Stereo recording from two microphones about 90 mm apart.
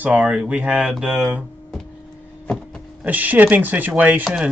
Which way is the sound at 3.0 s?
20° right (ahead or behind).